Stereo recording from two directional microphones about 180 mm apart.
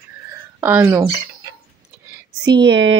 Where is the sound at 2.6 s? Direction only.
75° right (ahead or behind).